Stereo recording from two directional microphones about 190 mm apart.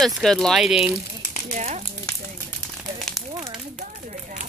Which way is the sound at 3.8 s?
40° right (ahead or behind).